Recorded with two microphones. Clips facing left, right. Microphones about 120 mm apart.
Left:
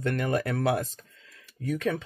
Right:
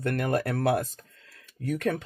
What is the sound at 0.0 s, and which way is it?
Speech, 60° right (ahead or behind).